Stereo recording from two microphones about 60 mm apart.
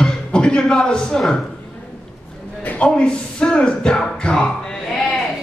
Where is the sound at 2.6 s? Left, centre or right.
Left.